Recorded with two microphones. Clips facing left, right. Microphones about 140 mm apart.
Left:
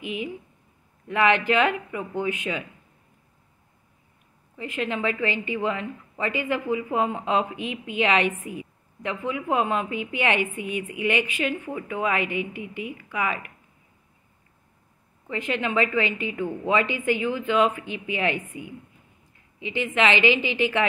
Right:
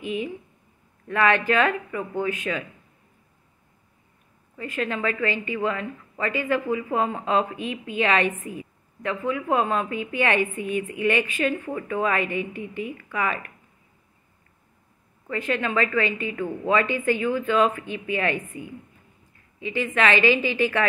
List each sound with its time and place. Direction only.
0.0 s a woman's voice: 15° left (ahead or behind)
4.6 s a woman's voice: 20° left (ahead or behind)
15.2 s a woman's voice: 20° left (ahead or behind)